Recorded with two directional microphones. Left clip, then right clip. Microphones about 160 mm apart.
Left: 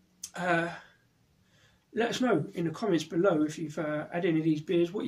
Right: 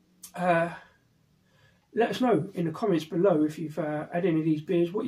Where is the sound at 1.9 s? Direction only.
15° left (ahead or behind).